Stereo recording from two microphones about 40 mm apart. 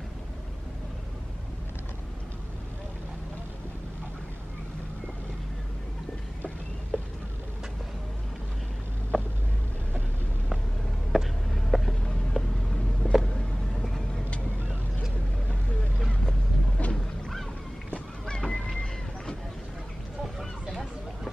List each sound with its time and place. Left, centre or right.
9.1 s vehicle: left
11.1 s a sound: centre
13.0 s vehicle: left
13.7 s vehicle: centre
16.1 s boat: left
18.2 s goose: centre
18.7 s vehicle: centre
20.3 s a sound: centre